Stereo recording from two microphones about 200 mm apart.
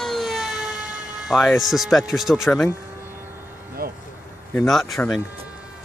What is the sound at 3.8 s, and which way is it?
Vehicle, 50° right (ahead or behind).